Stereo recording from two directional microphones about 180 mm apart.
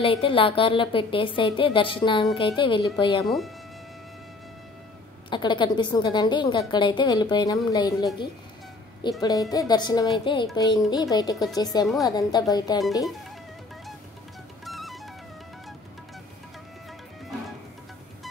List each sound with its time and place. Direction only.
0.0 s a woman's voice: 30° left (ahead or behind)
3.3 s speech: centre (ahead or behind)
5.3 s a woman's voice: 25° left (ahead or behind)
14.6 s music: centre (ahead or behind)